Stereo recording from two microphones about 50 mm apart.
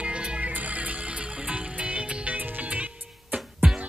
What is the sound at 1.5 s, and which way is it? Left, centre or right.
Music, right.